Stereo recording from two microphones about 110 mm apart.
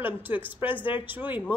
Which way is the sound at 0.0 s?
15° right (ahead or behind).